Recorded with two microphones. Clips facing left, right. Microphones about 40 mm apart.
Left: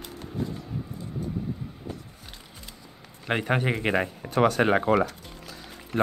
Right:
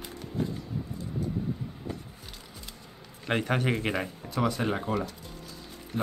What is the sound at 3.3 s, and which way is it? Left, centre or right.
Speech, centre.